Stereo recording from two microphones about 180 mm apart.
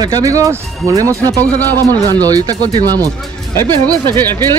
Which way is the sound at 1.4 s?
10° left (ahead or behind).